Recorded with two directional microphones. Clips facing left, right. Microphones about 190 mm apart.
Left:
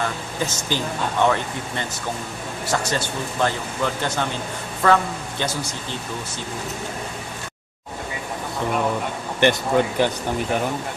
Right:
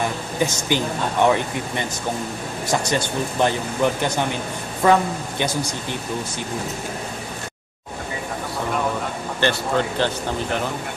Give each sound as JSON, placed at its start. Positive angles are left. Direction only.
{"t": 0.0, "sound": "speech", "side_deg": -15}
{"t": 9.4, "sound": "speech", "side_deg": 15}